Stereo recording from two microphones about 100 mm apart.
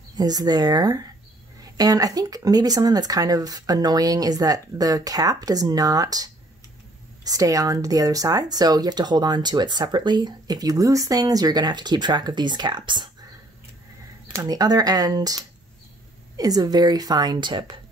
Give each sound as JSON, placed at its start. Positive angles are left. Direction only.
{"t": 0.1, "sound": "speech", "side_deg": -40}
{"t": 14.4, "sound": "speech", "side_deg": -40}